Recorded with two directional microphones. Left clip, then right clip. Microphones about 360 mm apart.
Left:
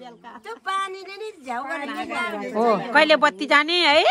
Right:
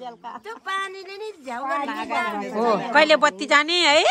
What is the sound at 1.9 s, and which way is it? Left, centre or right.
Speech, centre.